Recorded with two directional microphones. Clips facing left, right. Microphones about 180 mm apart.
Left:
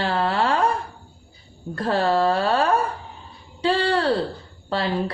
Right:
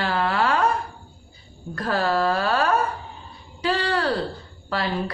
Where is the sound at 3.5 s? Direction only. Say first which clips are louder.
Left 3 dB; 30° left (ahead or behind).